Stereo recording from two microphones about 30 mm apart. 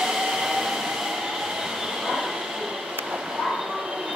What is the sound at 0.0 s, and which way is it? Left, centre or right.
Train, centre.